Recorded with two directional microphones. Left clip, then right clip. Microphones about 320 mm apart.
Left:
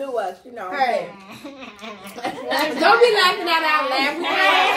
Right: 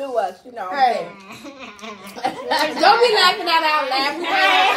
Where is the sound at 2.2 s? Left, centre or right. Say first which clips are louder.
Right 2 dB; centre.